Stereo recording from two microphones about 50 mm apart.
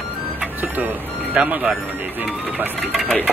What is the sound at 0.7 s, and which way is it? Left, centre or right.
Music, right.